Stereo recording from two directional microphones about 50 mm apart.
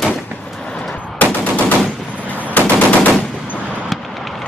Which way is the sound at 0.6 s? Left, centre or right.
Centre.